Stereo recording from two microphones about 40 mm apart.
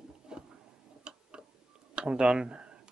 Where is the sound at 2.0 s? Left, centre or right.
Right.